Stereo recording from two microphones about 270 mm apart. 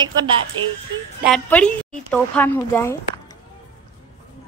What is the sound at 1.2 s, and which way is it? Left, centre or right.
A woman's voice, centre.